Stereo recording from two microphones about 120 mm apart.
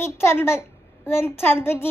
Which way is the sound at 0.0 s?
20° left (ahead or behind).